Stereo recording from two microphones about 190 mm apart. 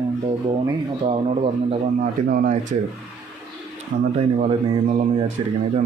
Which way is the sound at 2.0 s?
45° right (ahead or behind).